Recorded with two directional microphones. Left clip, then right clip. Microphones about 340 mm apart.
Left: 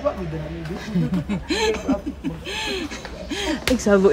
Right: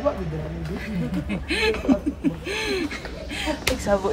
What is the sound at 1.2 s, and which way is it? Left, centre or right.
Speech, centre.